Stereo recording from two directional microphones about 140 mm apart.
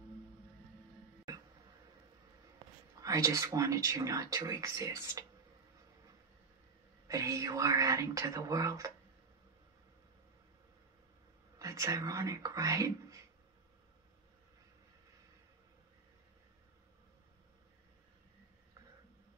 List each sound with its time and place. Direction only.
3.0 s speech: 25° right (ahead or behind)
7.1 s speech: 25° right (ahead or behind)
11.5 s speech: 25° right (ahead or behind)